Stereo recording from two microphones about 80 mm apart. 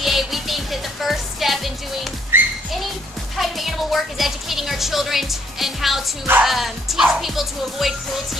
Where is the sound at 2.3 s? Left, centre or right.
Right.